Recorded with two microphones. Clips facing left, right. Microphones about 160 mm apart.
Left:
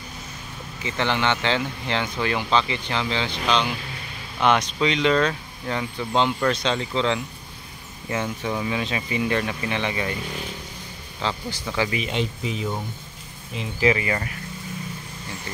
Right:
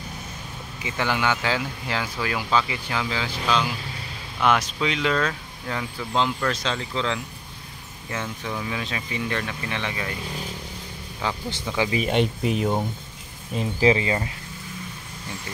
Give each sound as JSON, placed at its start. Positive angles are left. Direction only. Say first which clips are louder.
{"t": 0.8, "sound": "speech", "louder": "left 1 dB", "side_deg": -10}
{"t": 11.1, "sound": "speech", "louder": "left 1 dB", "side_deg": -10}
{"t": 12.0, "sound": "speech", "louder": "right 4 dB", "side_deg": -55}
{"t": 13.6, "sound": "speech", "louder": "right 2 dB", "side_deg": -30}